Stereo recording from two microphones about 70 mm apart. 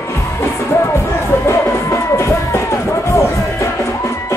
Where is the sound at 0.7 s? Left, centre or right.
Left.